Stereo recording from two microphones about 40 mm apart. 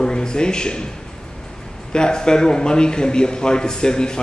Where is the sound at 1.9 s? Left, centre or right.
Left.